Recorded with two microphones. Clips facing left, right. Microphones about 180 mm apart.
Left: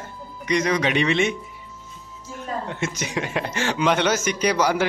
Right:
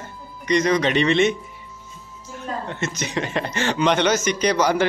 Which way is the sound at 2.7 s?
10° left (ahead or behind).